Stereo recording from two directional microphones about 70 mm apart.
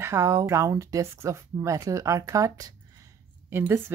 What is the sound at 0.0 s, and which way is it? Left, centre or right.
A woman's voice, right.